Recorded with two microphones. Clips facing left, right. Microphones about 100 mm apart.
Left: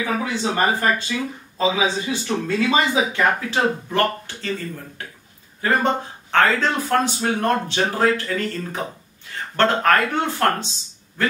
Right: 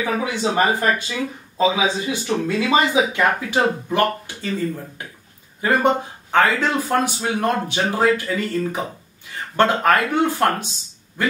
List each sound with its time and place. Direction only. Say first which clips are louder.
0.0 s speech: right 1 dB; 15° right (ahead or behind)